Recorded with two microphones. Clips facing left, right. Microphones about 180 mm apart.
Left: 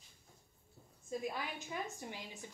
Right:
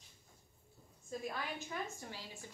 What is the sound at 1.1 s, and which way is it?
A woman's voice, 15° left (ahead or behind).